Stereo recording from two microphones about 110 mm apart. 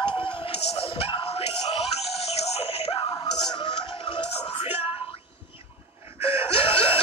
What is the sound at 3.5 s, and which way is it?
Music, 45° left (ahead or behind).